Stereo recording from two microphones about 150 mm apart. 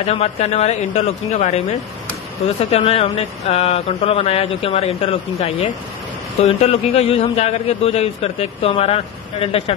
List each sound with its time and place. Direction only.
0.0 s a man's voice: 45° left (ahead or behind)